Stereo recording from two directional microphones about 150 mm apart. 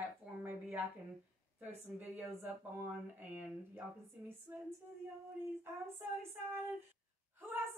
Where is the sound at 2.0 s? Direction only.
10° right (ahead or behind).